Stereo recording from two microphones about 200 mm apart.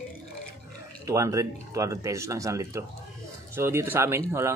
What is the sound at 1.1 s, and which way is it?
Speech, 15° right (ahead or behind).